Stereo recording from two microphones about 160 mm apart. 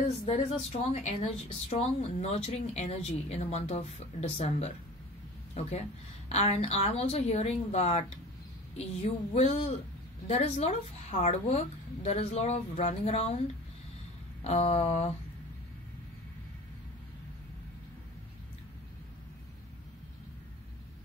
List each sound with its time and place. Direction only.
0.2 s a woman's voice: 40° left (ahead or behind)
14.4 s speech: 40° left (ahead or behind)